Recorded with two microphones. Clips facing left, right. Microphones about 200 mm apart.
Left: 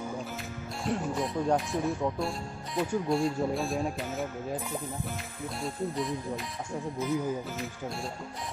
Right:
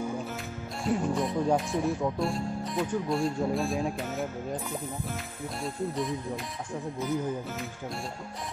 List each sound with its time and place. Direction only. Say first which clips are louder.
0.8 s speech: right 3 dB; centre (ahead or behind)